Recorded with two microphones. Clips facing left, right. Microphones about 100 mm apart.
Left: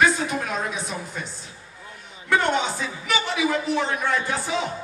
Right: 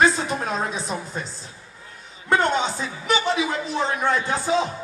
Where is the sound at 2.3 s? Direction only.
30° right (ahead or behind).